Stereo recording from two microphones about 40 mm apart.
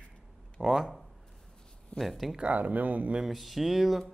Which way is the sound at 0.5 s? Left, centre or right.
Centre.